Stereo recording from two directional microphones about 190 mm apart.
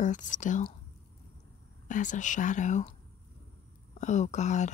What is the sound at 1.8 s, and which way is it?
Speech, 40° left (ahead or behind).